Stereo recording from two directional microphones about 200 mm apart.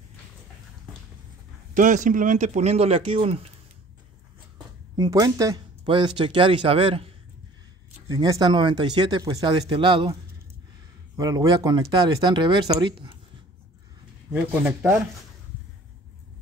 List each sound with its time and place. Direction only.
1.7 s speech: 40° right (ahead or behind)
4.9 s speech: 20° right (ahead or behind)
8.1 s speech: 20° right (ahead or behind)
11.1 s speech: 20° right (ahead or behind)
14.3 s speech: 10° right (ahead or behind)